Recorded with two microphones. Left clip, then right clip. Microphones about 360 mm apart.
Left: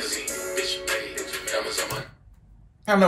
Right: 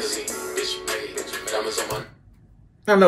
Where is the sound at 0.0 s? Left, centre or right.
Centre.